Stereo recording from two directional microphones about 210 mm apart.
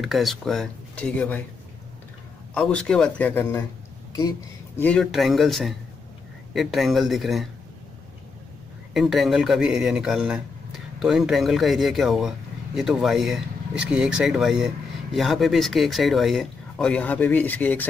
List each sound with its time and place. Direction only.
0.0 s a man's voice: centre (ahead or behind)
2.5 s a man's voice: 5° left (ahead or behind)
4.8 s a man's voice: centre (ahead or behind)
8.9 s a man's voice: centre (ahead or behind)